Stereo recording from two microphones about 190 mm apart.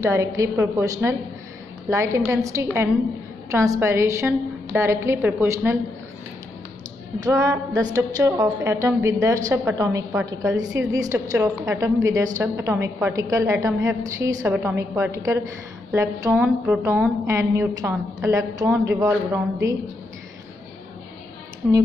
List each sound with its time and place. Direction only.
0.0 s a woman's voice: 15° right (ahead or behind)
7.2 s a woman's voice: 20° right (ahead or behind)
21.6 s speech: 5° right (ahead or behind)